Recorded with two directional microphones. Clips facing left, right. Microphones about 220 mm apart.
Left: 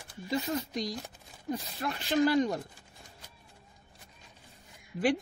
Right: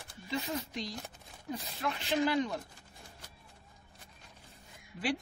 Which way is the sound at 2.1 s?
45° left (ahead or behind).